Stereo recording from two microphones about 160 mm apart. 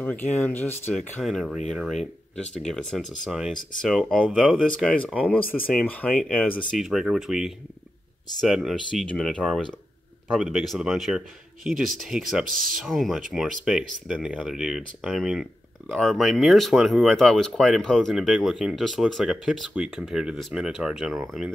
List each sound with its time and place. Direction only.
0.0 s speech: 10° left (ahead or behind)
0.9 s speech: centre (ahead or behind)
12.4 s speech: 60° right (ahead or behind)
12.8 s speech: centre (ahead or behind)